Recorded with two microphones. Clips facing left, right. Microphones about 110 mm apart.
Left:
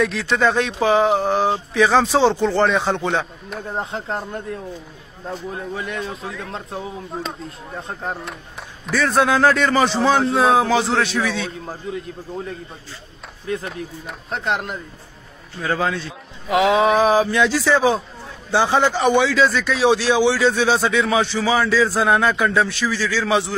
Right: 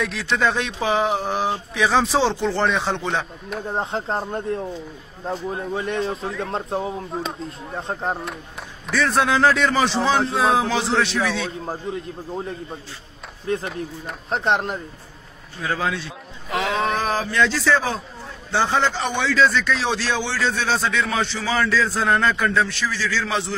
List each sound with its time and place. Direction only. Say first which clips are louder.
0.0 s a man's voice: left 3 dB; centre (ahead or behind)
3.8 s speech: right 2 dB; 30° right (ahead or behind)
5.3 s a man's voice: right 2 dB; centre (ahead or behind)
5.9 s speech: right 4 dB; 30° right (ahead or behind)
6.2 s a man's voice: right 3 dB; centre (ahead or behind)
6.5 s speech: right 5 dB; 35° right (ahead or behind)
7.1 s a man's voice: right 1 dB; 5° right (ahead or behind)
13.5 s speech: right 1 dB; 30° right (ahead or behind)
15.6 s speech: left 3 dB; centre (ahead or behind)